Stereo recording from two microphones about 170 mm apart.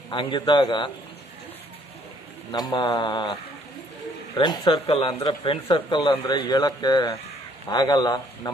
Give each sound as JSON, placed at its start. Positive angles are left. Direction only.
{"t": 0.1, "sound": "speech", "side_deg": 30}
{"t": 2.5, "sound": "speech", "side_deg": 25}
{"t": 4.4, "sound": "speech", "side_deg": 25}